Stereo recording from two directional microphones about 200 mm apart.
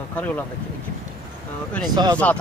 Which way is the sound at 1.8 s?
20° right (ahead or behind).